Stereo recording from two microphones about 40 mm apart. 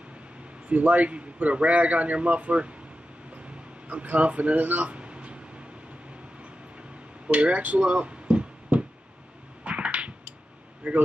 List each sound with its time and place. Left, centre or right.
0.7 s a man's voice: right
3.8 s a man's voice: right
4.8 s a sound: right
7.2 s speech: right
9.7 s a sound: right
10.8 s a man's voice: right